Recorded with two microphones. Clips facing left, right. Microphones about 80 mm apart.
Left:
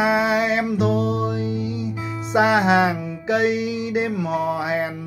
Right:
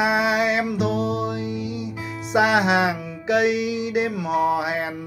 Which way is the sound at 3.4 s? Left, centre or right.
Left.